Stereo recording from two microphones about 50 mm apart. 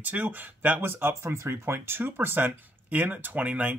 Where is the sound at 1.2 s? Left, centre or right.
Right.